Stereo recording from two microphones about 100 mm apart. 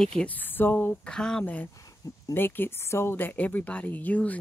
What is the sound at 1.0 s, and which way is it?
Speech, 5° left (ahead or behind).